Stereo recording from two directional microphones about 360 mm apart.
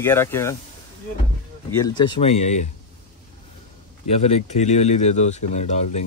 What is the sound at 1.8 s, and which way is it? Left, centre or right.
Speech, centre.